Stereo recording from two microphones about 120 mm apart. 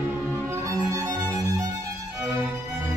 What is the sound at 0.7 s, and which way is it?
Music, 30° right (ahead or behind).